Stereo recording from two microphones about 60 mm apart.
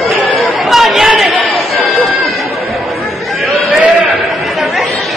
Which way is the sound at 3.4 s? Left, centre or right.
Right.